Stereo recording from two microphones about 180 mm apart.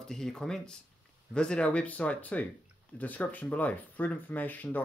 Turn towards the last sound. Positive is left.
turn(degrees=10)  # may be behind; listen again after turning